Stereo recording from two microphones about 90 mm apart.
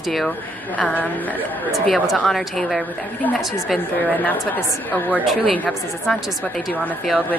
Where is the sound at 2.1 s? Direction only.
Centre (ahead or behind).